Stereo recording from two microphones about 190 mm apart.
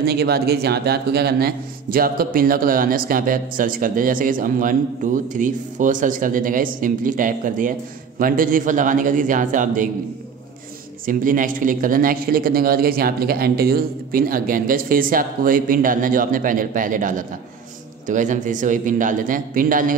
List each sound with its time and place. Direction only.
0.0 s a man's voice: 55° right (ahead or behind)
11.1 s a man's voice: 45° right (ahead or behind)